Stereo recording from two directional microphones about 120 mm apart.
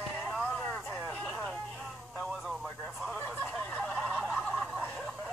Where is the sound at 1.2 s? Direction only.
Centre (ahead or behind).